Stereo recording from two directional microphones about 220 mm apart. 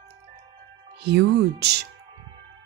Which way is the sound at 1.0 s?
50° right (ahead or behind).